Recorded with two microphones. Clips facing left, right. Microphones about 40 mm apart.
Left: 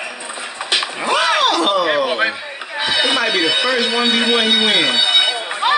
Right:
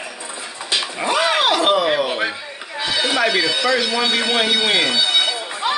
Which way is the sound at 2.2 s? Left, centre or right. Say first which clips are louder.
Left 4 dB; left.